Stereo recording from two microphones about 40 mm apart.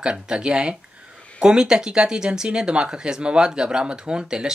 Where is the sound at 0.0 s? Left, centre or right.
Right.